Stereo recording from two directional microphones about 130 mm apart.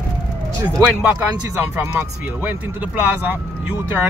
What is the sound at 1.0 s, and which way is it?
Speech, 15° right (ahead or behind).